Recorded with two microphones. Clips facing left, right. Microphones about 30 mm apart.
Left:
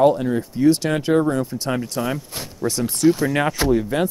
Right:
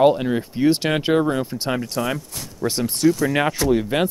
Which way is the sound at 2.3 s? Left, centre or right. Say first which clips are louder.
Left 3 dB; left.